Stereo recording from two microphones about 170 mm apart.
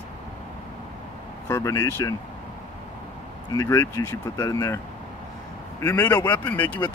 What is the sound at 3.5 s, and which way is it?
Speech, 20° left (ahead or behind).